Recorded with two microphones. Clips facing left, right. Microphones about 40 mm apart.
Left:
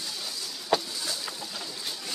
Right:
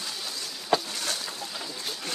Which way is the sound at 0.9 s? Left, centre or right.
Right.